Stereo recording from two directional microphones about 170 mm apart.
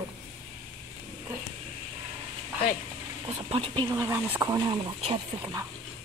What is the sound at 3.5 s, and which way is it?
Speech, 25° right (ahead or behind).